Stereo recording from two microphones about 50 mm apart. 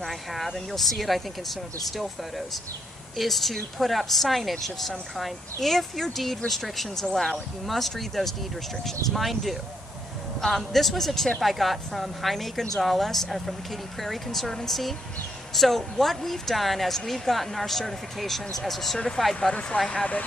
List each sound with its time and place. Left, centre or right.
0.0 s speech: centre
3.2 s speech: centre
19.9 s speech: left